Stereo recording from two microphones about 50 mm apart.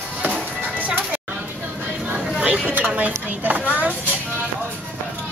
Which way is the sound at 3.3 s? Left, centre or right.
Right.